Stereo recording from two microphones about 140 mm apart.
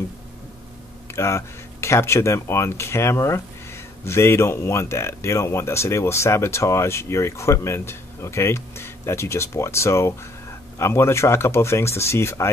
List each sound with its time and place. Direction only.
1.0 s speech: 20° left (ahead or behind)